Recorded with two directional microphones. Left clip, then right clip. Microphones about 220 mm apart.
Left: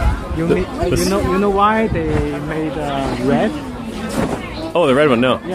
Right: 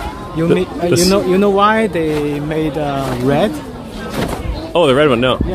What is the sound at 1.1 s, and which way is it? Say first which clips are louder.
Speech: right 4 dB; 55° right (ahead or behind).